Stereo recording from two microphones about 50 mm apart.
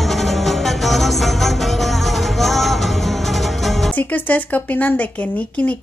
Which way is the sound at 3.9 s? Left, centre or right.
Left.